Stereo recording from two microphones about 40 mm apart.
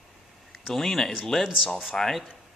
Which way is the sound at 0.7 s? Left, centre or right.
Centre.